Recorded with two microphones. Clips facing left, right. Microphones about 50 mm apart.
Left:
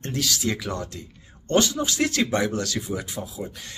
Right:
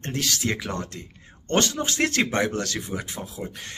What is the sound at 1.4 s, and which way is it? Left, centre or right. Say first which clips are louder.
A man's voice: left 2 dB; right.